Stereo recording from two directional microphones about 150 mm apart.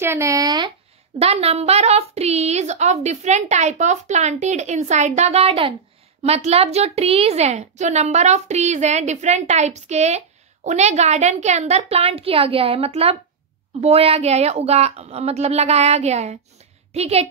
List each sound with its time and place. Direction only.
0.0 s speech: 20° right (ahead or behind)
1.2 s a woman's voice: 40° right (ahead or behind)